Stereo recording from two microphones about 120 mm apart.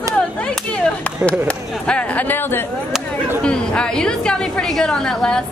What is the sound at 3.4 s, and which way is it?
Chatter, 5° left (ahead or behind).